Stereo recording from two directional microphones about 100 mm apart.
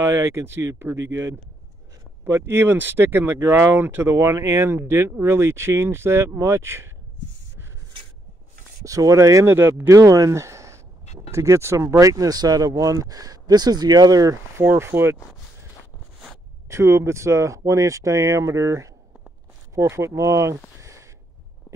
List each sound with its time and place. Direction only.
0.0 s speech: 25° right (ahead or behind)
8.8 s speech: 35° right (ahead or behind)
14.6 s speech: 25° right (ahead or behind)
16.6 s speech: 30° right (ahead or behind)
20.8 s a sound: 30° right (ahead or behind)